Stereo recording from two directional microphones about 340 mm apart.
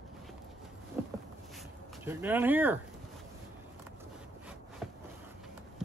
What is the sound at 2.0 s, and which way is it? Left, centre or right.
Speech, centre.